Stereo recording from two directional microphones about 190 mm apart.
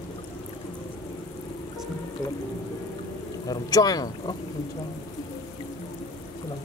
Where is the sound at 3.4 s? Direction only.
20° left (ahead or behind).